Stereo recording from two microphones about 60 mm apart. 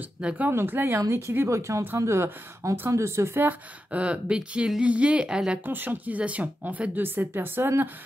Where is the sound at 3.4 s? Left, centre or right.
Right.